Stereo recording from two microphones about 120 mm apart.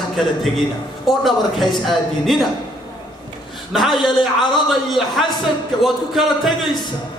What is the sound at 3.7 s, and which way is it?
A man's voice, centre (ahead or behind).